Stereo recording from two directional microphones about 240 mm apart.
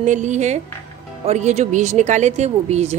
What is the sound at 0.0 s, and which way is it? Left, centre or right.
Speech, right.